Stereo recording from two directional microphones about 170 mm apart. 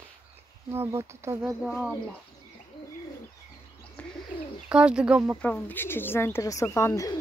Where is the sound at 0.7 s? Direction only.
15° right (ahead or behind).